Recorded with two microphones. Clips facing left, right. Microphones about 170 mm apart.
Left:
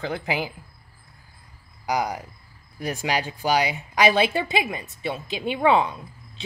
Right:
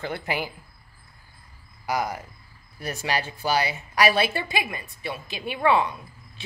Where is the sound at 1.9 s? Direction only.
15° left (ahead or behind).